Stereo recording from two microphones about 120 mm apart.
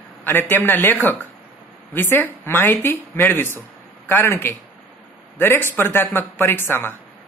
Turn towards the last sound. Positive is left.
turn(degrees=20)  # may be behind; listen again after turning